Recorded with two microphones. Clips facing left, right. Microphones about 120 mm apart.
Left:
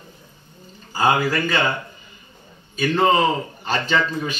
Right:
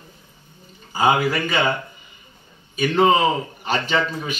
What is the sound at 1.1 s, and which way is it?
Speech, 20° right (ahead or behind).